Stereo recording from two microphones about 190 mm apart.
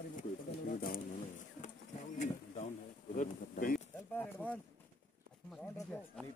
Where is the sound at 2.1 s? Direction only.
40° left (ahead or behind).